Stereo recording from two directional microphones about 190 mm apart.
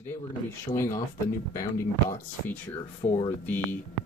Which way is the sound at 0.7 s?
15° left (ahead or behind).